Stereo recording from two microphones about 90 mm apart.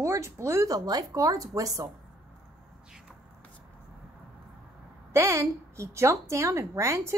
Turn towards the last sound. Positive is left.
turn(degrees=-35)  # may be behind; listen again after turning